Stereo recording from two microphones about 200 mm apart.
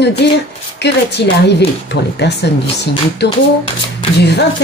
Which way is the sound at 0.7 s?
60° left (ahead or behind).